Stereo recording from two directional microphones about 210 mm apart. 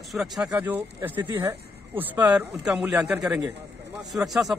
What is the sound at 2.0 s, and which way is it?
A man's voice, 10° right (ahead or behind).